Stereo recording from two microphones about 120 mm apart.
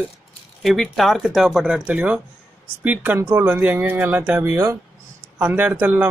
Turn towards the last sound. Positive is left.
turn(degrees=-15)  # may be behind; listen again after turning